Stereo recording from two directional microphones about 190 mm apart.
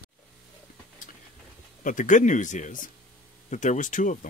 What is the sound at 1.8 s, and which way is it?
Speech, 45° left (ahead or behind).